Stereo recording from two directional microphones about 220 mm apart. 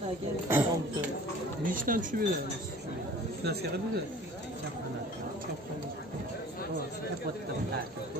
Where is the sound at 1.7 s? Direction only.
40° right (ahead or behind).